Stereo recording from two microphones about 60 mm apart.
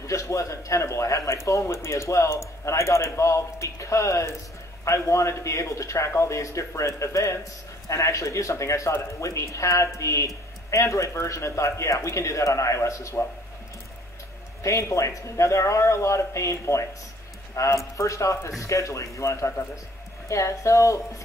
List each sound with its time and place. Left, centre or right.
0.0 s speech: left
14.6 s speech: left